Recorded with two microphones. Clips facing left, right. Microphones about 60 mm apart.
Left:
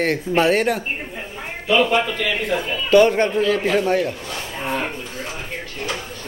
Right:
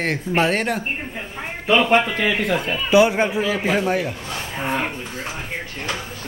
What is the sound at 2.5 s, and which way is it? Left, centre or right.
Speech, centre.